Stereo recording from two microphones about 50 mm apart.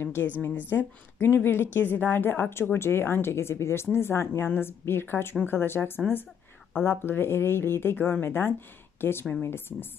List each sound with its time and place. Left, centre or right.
0.0 s a woman's voice: left